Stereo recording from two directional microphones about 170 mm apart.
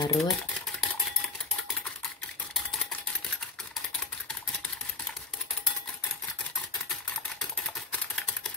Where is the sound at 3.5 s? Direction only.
Centre (ahead or behind).